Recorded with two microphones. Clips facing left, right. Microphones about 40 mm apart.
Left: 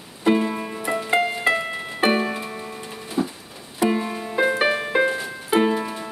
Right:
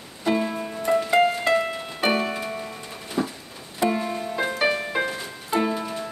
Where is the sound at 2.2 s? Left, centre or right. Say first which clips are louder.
Left 1 dB; centre.